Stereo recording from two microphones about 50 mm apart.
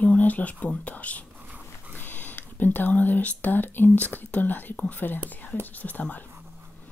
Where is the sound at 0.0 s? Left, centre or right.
Left.